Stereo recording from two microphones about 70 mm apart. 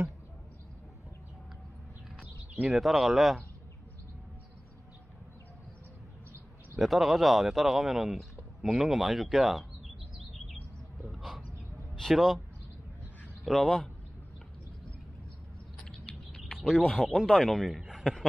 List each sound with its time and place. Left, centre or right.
2.7 s speech: centre
6.8 s speech: centre
8.4 s a sound: centre
8.8 s speech: centre
11.1 s dog: centre
12.0 s speech: centre
13.5 s speech: centre
16.3 s speech: centre